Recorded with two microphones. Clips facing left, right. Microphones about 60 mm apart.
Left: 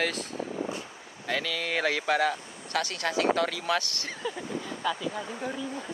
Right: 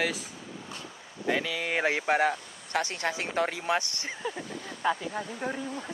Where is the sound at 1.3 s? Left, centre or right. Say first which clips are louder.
Right 1 dB; centre.